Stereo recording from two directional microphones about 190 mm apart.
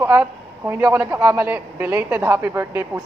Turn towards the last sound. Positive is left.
turn(degrees=-10)  # may be behind; listen again after turning